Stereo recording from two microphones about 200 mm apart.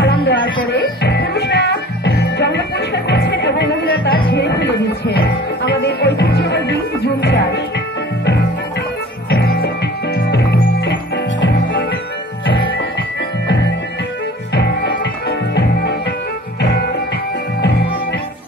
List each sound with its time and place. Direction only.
0.0 s music: 55° left (ahead or behind)
9.3 s music: 50° left (ahead or behind)
14.5 s music: 60° left (ahead or behind)